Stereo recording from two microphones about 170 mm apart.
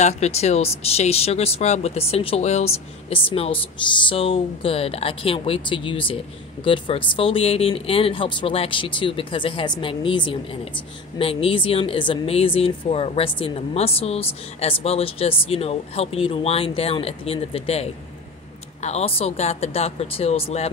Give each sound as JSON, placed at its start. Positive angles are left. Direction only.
{"t": 0.0, "sound": "speech", "side_deg": 40}